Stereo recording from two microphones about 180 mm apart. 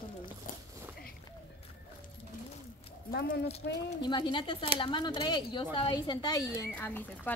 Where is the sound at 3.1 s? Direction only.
60° left (ahead or behind).